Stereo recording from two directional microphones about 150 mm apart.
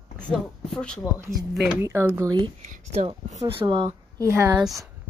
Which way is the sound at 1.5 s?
10° right (ahead or behind).